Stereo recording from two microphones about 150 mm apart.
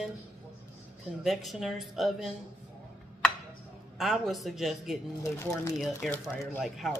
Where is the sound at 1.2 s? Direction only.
Centre (ahead or behind).